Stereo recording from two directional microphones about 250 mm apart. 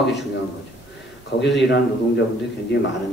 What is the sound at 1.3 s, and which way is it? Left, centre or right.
Speech, left.